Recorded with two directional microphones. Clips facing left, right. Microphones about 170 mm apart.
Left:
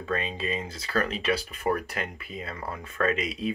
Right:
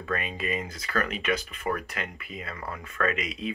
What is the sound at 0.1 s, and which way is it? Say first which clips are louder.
Speech: left 1 dB; 25° left (ahead or behind).